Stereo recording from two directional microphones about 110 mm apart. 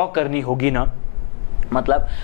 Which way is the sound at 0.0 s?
10° left (ahead or behind).